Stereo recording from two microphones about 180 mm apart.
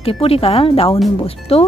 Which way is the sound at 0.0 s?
30° left (ahead or behind).